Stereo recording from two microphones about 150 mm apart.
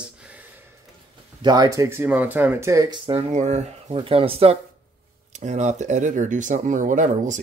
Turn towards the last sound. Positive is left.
turn(degrees=-55)  # may be behind; listen again after turning